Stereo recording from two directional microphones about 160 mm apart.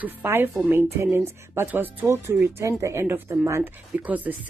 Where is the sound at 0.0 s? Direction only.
15° right (ahead or behind).